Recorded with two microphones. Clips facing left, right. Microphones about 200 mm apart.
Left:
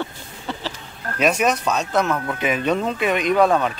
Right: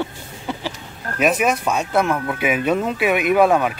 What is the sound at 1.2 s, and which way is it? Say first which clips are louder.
Speech: right 1 dB; 5° right (ahead or behind).